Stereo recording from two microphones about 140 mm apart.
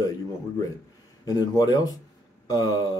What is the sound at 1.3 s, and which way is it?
Speech, 30° left (ahead or behind).